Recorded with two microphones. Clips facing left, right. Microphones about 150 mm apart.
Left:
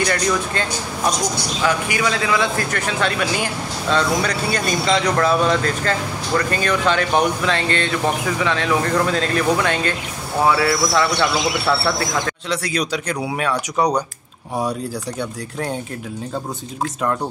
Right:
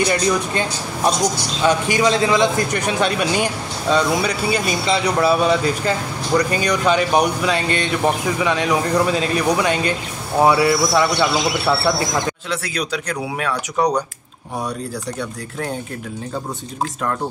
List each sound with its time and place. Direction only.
0.0 s a man's voice: 15° right (ahead or behind)
2.4 s speech: 15° right (ahead or behind)
12.4 s speech: centre (ahead or behind)